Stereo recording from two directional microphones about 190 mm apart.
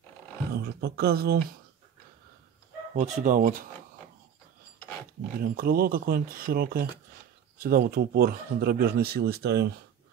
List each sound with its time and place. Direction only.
0.6 s speech: 55° right (ahead or behind)
3.0 s speech: 45° right (ahead or behind)
5.4 s speech: 50° right (ahead or behind)